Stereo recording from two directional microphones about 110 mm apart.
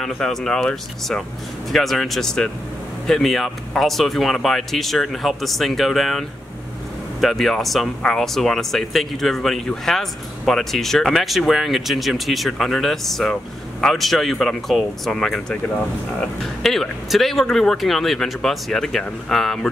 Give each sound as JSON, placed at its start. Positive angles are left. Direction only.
{"t": 0.0, "sound": "speech", "side_deg": 5}